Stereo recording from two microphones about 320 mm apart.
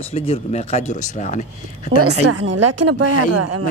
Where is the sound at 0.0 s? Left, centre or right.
Centre.